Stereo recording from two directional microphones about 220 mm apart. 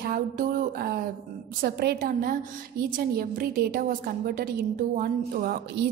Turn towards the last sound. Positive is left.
turn(degrees=-45)  # may be behind; listen again after turning